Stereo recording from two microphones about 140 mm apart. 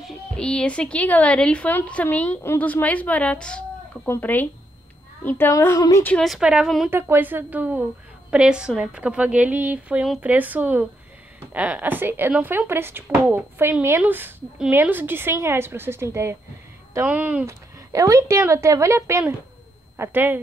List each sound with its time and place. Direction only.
0.4 s a woman's voice: 5° left (ahead or behind); by 6.0 s 25° left (ahead or behind)
6.0 s a woman's voice: 5° left (ahead or behind)
6.9 s speech: 15° right (ahead or behind)
17.9 s a woman's voice: 25° right (ahead or behind)